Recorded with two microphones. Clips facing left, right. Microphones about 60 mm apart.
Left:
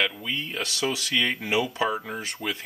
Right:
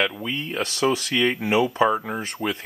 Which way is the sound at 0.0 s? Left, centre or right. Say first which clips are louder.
Right 3 dB; centre.